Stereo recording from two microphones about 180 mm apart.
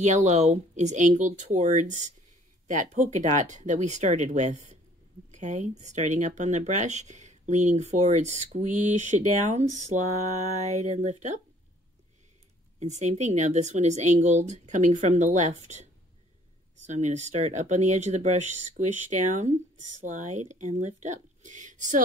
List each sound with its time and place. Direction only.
0.0 s speech: 40° right (ahead or behind)
12.7 s speech: 40° right (ahead or behind)